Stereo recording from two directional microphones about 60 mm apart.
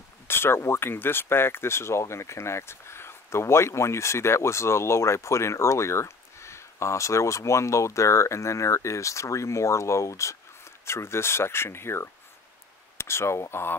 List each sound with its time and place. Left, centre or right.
0.3 s speech: left